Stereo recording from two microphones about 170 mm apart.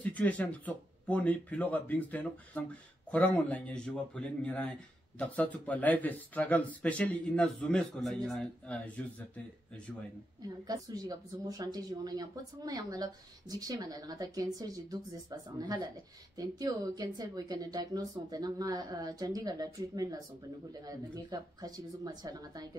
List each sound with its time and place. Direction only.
0.0 s speech: 10° left (ahead or behind)
10.7 s speech: 20° right (ahead or behind)